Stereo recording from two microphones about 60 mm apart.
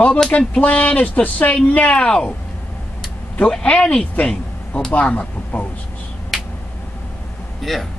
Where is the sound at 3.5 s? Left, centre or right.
Centre.